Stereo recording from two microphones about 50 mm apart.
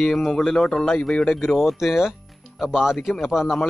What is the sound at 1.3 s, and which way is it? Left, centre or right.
Speech, centre.